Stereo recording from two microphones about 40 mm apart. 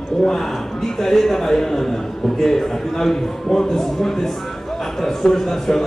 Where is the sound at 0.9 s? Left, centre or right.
Centre.